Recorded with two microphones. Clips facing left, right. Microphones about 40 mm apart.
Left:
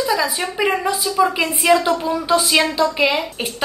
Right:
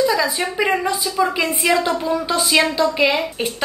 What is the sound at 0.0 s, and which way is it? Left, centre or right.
A woman's voice, centre.